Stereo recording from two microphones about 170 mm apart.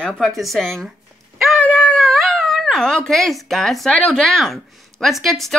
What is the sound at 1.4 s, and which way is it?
Dog, 5° left (ahead or behind).